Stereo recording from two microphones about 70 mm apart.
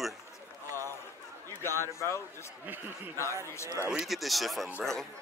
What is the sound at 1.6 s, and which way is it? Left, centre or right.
Speech, left.